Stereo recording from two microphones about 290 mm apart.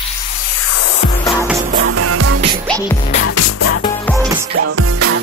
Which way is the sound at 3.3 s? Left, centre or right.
Left.